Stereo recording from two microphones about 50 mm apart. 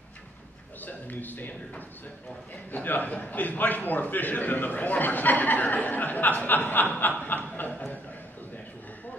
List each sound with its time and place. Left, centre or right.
0.7 s a sound: left
2.7 s a man's voice: left
7.2 s chuckle: left